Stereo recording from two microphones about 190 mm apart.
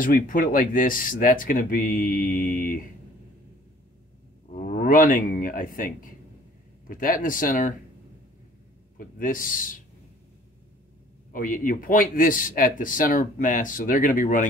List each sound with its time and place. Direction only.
0.0 s speech: 45° left (ahead or behind)
4.6 s speech: 45° left (ahead or behind)
8.9 s speech: 45° left (ahead or behind)
11.3 s speech: 45° left (ahead or behind)